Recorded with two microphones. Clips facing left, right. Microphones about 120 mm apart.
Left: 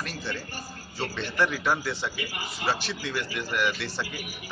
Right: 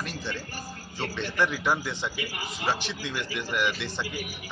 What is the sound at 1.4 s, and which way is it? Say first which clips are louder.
Speech: left 1 dB; 15° right (ahead or behind).